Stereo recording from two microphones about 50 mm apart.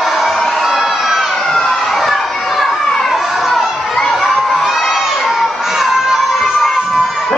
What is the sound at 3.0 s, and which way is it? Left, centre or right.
Children playing, centre.